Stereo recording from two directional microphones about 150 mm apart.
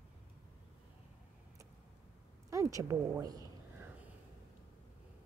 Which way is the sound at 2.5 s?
20° right (ahead or behind).